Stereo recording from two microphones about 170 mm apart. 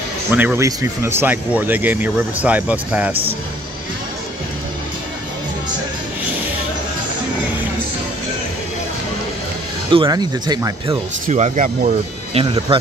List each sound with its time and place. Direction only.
0.3 s speech: 10° right (ahead or behind)
9.8 s speech: 25° right (ahead or behind)
11.2 s speech: 45° right (ahead or behind)
12.4 s speech: 30° right (ahead or behind)